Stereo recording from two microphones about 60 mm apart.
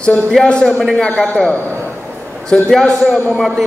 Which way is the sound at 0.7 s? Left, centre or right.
Centre.